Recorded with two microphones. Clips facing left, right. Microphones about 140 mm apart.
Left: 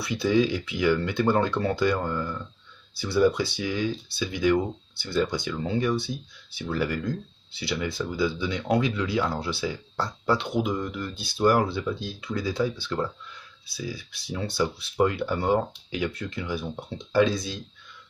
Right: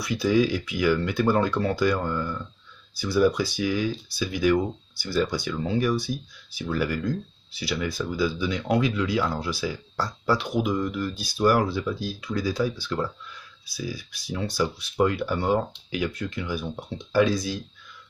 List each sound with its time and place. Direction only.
0.0 s speech: 25° left (ahead or behind)